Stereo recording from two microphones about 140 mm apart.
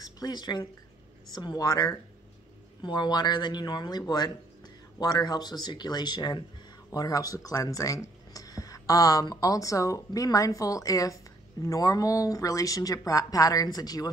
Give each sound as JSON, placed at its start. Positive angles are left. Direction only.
{"t": 0.0, "sound": "speech", "side_deg": 30}